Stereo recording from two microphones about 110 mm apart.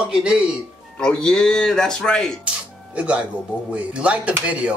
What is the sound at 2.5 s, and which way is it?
Music, 10° right (ahead or behind).